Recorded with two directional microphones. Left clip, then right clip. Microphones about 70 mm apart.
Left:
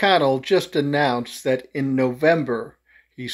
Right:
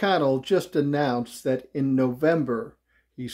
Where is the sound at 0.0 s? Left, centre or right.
Right.